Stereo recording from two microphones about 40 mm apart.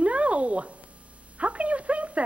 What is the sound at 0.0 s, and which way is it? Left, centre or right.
Cat, right.